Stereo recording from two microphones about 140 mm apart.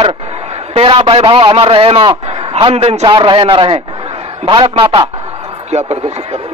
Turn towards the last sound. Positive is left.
turn(degrees=-50)  # may be behind; listen again after turning